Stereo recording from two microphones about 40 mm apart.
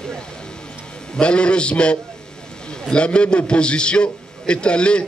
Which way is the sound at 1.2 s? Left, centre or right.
Left.